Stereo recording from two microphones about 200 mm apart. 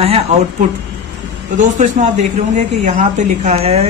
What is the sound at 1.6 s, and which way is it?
A woman's voice, 35° right (ahead or behind).